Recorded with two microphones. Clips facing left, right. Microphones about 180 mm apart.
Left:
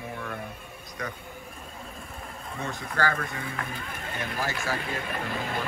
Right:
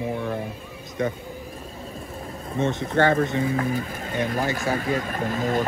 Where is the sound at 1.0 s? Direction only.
25° right (ahead or behind).